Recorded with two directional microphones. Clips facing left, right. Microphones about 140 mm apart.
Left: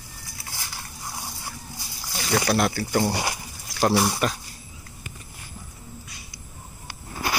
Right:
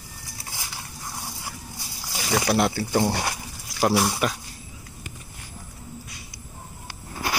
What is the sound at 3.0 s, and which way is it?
Speech, 5° left (ahead or behind).